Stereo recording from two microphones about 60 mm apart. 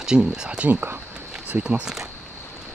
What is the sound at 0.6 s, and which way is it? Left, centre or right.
Speech, right.